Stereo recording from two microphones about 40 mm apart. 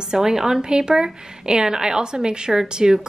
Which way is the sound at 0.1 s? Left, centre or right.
Centre.